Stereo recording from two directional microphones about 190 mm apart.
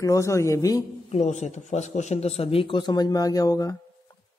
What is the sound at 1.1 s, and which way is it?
Speech, 35° left (ahead or behind).